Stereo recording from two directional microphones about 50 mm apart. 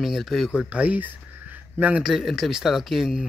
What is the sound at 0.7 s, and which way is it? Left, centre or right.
Speech, right.